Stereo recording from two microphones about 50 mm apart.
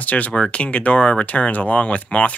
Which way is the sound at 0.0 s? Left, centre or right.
Left.